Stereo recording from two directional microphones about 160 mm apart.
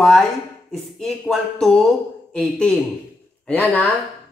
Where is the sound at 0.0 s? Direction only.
Centre (ahead or behind).